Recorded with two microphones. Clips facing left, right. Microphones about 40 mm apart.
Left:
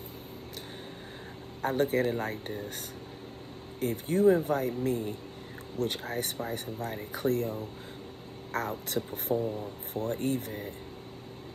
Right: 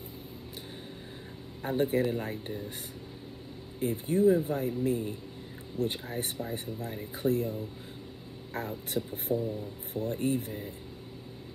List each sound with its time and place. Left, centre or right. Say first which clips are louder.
1.6 s speech: left 1 dB; left
3.9 s speech: left 1 dB; left
4.8 s speech: even; right
5.8 s speech: left 1 dB; left
10.1 s speech: right 2 dB; right